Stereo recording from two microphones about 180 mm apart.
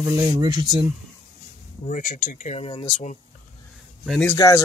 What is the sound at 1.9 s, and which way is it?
Speech, 45° left (ahead or behind).